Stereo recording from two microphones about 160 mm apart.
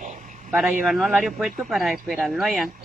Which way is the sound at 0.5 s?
Centre (ahead or behind).